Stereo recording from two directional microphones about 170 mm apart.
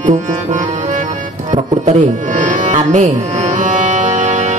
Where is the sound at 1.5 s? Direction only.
45° right (ahead or behind).